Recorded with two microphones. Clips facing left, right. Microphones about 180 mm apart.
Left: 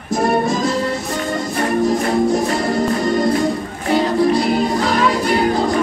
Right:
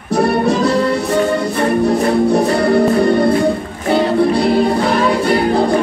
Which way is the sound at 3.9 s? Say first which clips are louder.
Right 3 dB; 30° right (ahead or behind).